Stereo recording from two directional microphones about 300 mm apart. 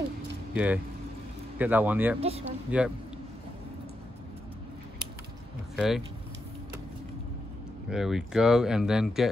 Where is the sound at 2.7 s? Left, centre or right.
Centre.